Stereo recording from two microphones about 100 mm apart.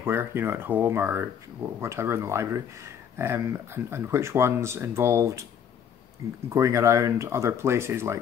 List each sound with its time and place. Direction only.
0.0 s speech: 25° right (ahead or behind)
6.5 s speech: 30° right (ahead or behind)